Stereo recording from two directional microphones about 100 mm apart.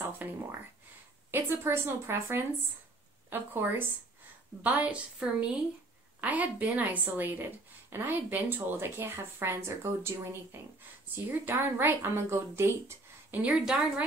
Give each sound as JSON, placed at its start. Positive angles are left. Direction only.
{"t": 0.0, "sound": "a woman's voice", "side_deg": -25}
{"t": 13.4, "sound": "a woman's voice", "side_deg": -10}